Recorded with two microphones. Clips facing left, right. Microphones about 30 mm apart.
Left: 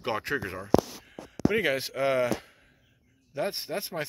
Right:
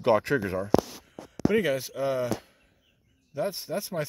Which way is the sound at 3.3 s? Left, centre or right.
Left.